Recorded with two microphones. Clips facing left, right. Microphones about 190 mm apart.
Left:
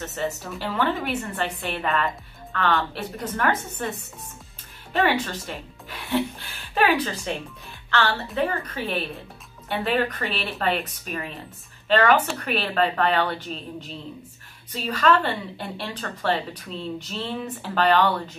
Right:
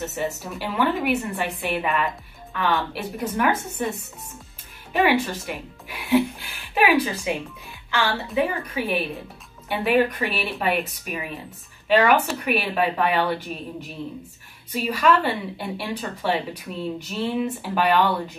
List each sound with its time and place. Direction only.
0.0 s a woman's voice: 10° right (ahead or behind)
4.9 s a woman's voice: 15° right (ahead or behind)
14.7 s a woman's voice: 15° right (ahead or behind)